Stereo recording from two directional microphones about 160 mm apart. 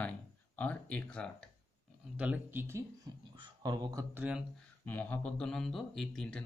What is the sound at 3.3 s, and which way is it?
Speech, 30° right (ahead or behind).